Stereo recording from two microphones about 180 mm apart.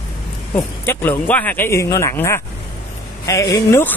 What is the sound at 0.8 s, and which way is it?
Speech, 10° left (ahead or behind).